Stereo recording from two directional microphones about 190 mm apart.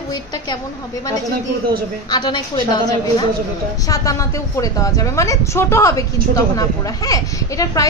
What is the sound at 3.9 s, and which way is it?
A woman's voice, 15° left (ahead or behind).